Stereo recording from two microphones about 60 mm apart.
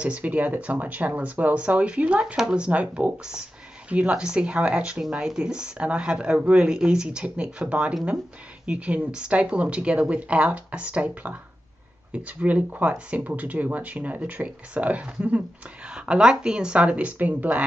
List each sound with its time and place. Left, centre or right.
0.0 s speech: right